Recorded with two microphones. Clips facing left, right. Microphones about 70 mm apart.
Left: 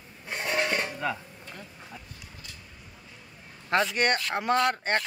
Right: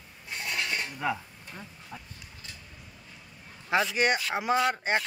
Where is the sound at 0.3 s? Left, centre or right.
Left.